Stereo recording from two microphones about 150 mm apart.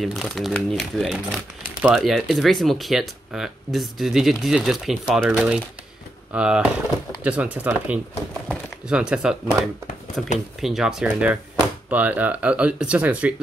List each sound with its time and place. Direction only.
0.0 s speech: centre (ahead or behind)